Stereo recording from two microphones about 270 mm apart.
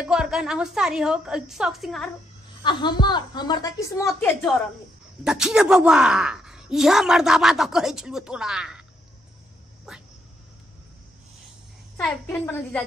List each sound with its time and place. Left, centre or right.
0.0 s speech: centre
2.6 s a woman's voice: centre
12.0 s speech: centre